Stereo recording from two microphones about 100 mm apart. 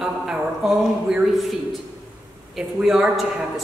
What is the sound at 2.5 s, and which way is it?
Speech, 5° right (ahead or behind).